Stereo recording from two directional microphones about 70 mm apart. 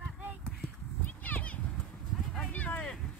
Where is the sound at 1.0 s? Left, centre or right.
Left.